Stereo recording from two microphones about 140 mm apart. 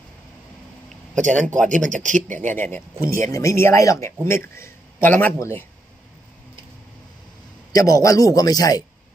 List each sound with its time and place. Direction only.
1.1 s speech: 65° right (ahead or behind)
2.5 s speech: 15° left (ahead or behind)
7.7 s speech: 25° left (ahead or behind)